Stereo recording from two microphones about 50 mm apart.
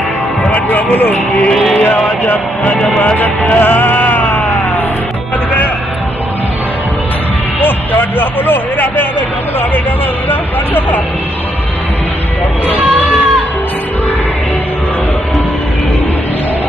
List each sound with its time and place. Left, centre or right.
0.5 s speech: left
1.5 s music: centre
2.2 s speech: left
3.2 s music: left
7.6 s speech: left